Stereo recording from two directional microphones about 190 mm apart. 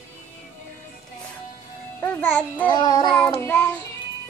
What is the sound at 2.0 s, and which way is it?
Music, 10° left (ahead or behind).